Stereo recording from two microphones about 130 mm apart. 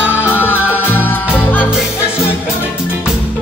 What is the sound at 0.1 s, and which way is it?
Music, 15° left (ahead or behind).